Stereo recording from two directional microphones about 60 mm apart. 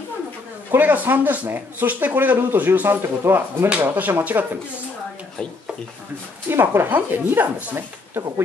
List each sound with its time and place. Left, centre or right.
0.7 s speech: right
6.5 s speech: right